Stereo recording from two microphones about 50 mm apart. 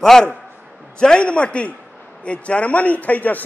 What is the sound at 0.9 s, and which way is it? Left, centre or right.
A man's voice, centre.